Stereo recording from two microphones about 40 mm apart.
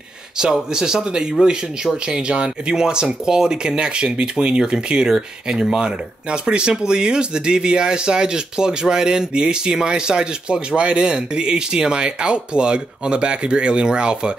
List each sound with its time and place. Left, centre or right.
0.4 s speech: centre